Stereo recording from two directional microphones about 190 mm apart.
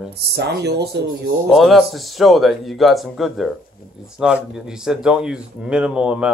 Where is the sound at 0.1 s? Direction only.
60° right (ahead or behind).